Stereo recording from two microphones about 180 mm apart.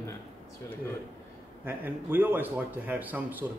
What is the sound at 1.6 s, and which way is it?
A man's voice, 10° right (ahead or behind).